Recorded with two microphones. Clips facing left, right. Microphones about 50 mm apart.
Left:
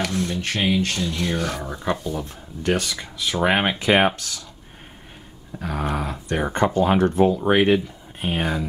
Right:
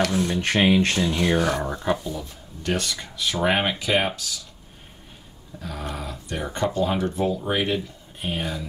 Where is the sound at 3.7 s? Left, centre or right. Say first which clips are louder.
Left 5 dB; left.